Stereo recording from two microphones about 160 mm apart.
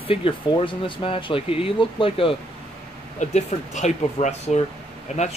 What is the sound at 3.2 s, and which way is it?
Speech, 45° left (ahead or behind).